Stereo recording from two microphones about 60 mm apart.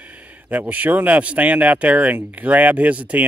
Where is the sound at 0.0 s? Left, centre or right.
Right.